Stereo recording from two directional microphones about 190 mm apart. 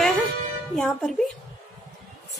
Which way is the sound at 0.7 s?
Centre (ahead or behind).